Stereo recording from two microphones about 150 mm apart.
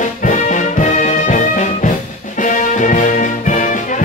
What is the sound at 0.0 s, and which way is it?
Music, 55° left (ahead or behind).